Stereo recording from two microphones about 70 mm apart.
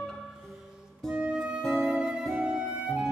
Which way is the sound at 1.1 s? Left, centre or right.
Centre.